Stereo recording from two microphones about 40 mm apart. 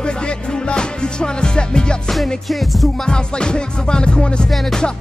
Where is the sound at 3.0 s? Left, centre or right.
Left.